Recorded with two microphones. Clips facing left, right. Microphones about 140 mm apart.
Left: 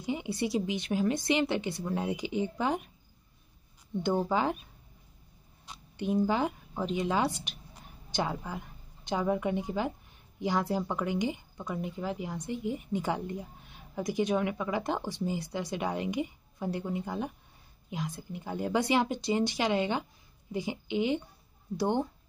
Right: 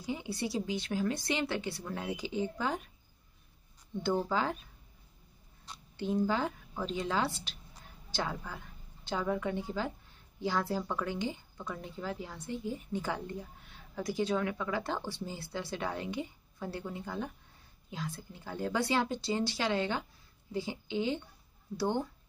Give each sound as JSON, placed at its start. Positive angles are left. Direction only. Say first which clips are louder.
{"t": 0.0, "sound": "speech", "louder": "left 4 dB", "side_deg": 20}
{"t": 4.0, "sound": "speech", "louder": "left 3 dB", "side_deg": 20}
{"t": 5.7, "sound": "speech", "louder": "left 3 dB", "side_deg": 15}